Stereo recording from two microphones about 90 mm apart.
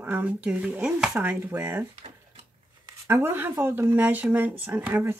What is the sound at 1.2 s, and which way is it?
Speech, 20° right (ahead or behind).